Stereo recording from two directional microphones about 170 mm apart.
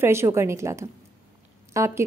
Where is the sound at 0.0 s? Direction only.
15° right (ahead or behind).